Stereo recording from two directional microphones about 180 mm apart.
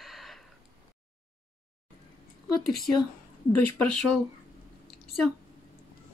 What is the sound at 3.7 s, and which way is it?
Speech, centre (ahead or behind).